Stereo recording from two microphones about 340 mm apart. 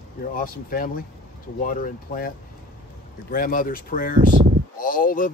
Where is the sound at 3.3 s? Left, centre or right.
Left.